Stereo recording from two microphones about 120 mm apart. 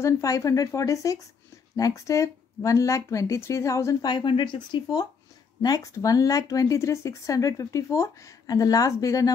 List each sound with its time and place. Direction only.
0.0 s speech: 25° left (ahead or behind)
4.1 s speech: 40° left (ahead or behind)